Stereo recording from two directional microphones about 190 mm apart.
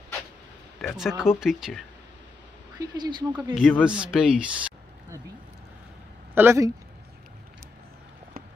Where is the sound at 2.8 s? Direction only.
20° right (ahead or behind).